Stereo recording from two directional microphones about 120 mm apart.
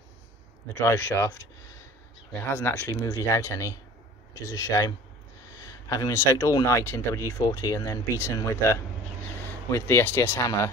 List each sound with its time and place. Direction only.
0.7 s speech: 20° left (ahead or behind)
2.5 s speech: 15° left (ahead or behind)